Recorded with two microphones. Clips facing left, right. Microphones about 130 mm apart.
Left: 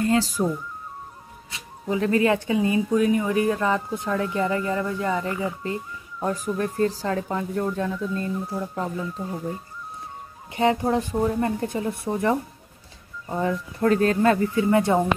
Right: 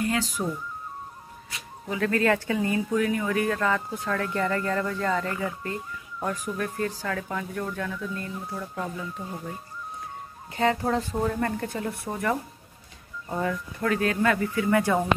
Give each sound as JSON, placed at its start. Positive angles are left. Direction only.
{"t": 0.0, "sound": "speech", "side_deg": 30}
{"t": 1.5, "sound": "speech", "side_deg": 25}
{"t": 10.5, "sound": "speech", "side_deg": 20}
{"t": 13.4, "sound": "speech", "side_deg": 30}